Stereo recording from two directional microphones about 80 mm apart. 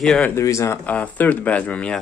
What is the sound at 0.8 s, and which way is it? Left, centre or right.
Speech, centre.